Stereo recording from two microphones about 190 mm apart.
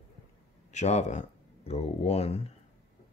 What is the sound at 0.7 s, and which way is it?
Speech, 35° left (ahead or behind).